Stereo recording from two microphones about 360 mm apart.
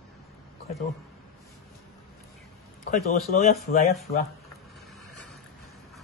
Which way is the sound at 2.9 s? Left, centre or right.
Centre.